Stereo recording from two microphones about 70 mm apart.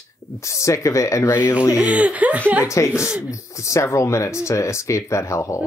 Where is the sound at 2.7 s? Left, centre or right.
Left.